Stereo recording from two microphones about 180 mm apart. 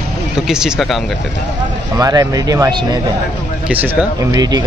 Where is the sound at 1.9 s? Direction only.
20° right (ahead or behind).